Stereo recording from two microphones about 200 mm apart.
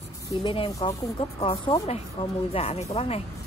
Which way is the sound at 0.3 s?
25° left (ahead or behind).